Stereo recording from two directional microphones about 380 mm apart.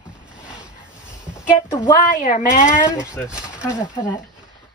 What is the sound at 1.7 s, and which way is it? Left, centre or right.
A woman's voice, centre.